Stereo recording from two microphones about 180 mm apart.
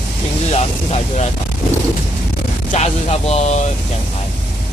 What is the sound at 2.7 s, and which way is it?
Speech, 35° left (ahead or behind).